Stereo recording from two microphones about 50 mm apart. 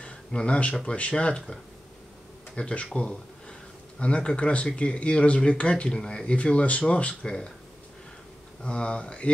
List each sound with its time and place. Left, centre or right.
0.0 s a sound: centre
0.8 s speech: left
8.6 s speech: left